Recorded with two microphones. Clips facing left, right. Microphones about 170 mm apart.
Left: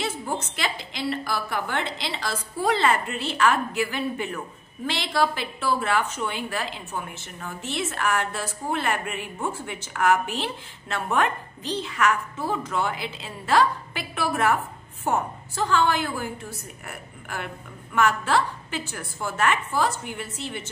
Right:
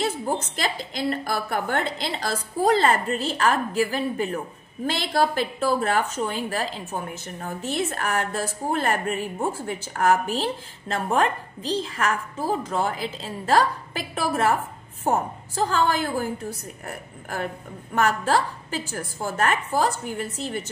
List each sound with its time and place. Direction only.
0.3 s a woman's voice: 40° right (ahead or behind)